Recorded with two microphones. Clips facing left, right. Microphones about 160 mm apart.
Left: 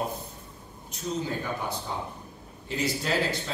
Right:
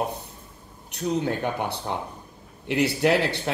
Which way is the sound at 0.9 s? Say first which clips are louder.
Right 6 dB; 65° right (ahead or behind).